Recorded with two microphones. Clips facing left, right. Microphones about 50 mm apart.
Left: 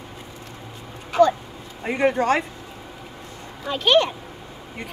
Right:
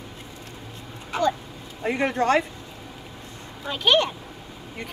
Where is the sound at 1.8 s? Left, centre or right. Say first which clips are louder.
Left 3 dB; centre.